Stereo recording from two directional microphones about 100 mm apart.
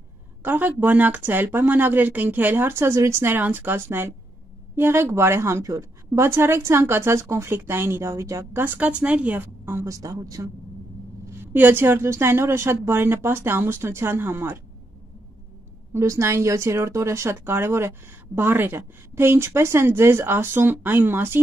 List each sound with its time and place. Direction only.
0.4 s speech: 20° right (ahead or behind)
9.8 s a woman's voice: 35° right (ahead or behind)
11.2 s speech: 25° right (ahead or behind)
15.9 s speech: 30° right (ahead or behind)